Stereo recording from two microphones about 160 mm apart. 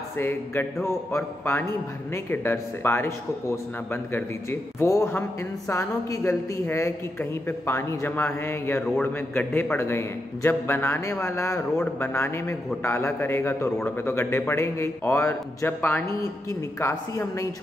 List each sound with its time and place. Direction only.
0.2 s a woman's voice: 15° left (ahead or behind)